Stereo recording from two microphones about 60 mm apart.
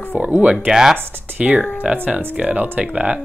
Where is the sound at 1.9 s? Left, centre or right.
Right.